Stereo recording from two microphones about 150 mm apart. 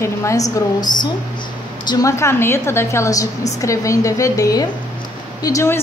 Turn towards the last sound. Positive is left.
turn(degrees=20)  # may be behind; listen again after turning